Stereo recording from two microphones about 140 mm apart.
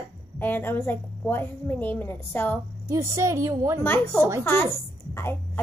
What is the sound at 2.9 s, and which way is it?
Speech, 20° right (ahead or behind).